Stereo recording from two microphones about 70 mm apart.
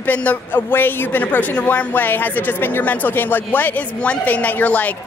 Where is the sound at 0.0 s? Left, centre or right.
Left.